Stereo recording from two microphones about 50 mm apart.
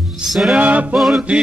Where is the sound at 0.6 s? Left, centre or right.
Right.